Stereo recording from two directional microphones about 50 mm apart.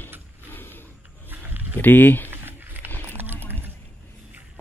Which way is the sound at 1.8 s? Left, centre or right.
Left.